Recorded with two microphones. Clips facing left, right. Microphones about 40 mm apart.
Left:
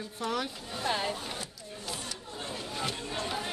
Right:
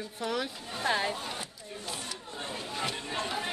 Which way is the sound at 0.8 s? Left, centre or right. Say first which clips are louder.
Right 2 dB; right.